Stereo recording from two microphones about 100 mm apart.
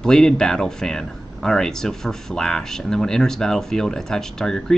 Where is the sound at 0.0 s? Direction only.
5° left (ahead or behind).